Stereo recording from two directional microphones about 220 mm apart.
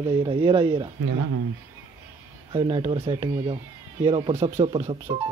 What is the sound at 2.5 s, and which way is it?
Speech, 20° right (ahead or behind).